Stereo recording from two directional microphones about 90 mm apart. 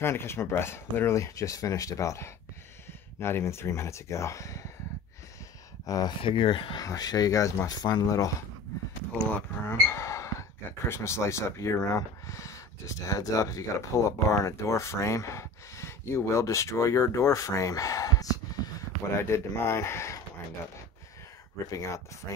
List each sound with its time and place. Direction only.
0.0 s speech: 25° left (ahead or behind)
5.9 s speech: 45° left (ahead or behind)
6.2 s speech: 75° left (ahead or behind)
6.8 s speech: 45° left (ahead or behind)
9.7 s speech: 30° left (ahead or behind)
19.1 s speech: 30° left (ahead or behind)
21.6 s speech: 40° left (ahead or behind)